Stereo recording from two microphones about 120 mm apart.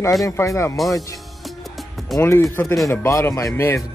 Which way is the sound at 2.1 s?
25° left (ahead or behind).